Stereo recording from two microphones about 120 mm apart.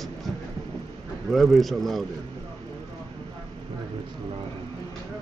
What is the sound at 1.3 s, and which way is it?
Speech, centre (ahead or behind).